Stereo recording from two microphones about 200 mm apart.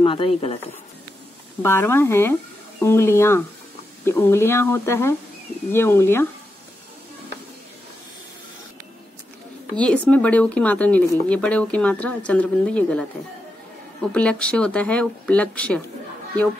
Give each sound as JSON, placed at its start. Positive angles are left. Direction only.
{"t": 0.0, "sound": "speech", "side_deg": 25}
{"t": 1.6, "sound": "speech", "side_deg": 10}
{"t": 9.8, "sound": "speech", "side_deg": 5}
{"t": 14.1, "sound": "speech", "side_deg": 5}